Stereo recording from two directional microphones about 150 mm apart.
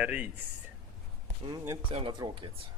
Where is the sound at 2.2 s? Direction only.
35° right (ahead or behind).